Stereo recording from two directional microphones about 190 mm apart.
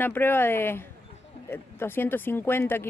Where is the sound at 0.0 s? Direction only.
10° left (ahead or behind).